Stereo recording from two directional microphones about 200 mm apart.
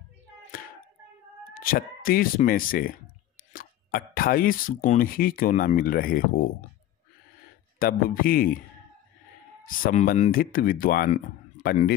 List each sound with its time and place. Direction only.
1.5 s speech: 45° left (ahead or behind)
7.8 s speech: 45° left (ahead or behind)
9.8 s speech: 45° left (ahead or behind)